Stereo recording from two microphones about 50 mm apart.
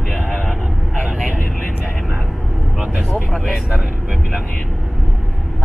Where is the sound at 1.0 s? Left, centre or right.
Right.